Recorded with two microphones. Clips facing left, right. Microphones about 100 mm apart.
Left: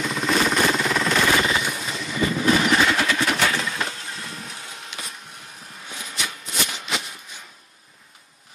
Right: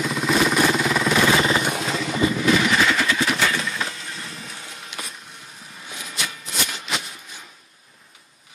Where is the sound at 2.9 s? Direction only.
5° left (ahead or behind).